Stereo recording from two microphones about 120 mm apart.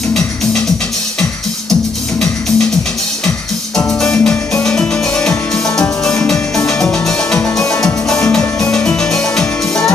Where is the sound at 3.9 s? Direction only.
5° left (ahead or behind).